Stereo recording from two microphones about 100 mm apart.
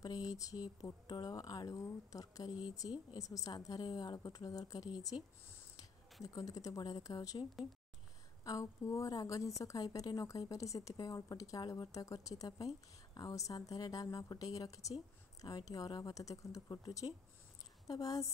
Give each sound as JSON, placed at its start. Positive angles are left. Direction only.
{"t": 0.0, "sound": "a woman's voice", "side_deg": 40}
{"t": 6.2, "sound": "a woman's voice", "side_deg": 35}
{"t": 8.5, "sound": "a woman's voice", "side_deg": 30}